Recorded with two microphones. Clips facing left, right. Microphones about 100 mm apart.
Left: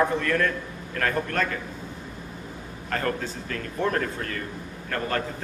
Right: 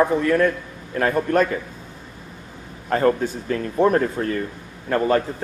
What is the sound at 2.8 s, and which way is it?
A man's voice, 20° right (ahead or behind).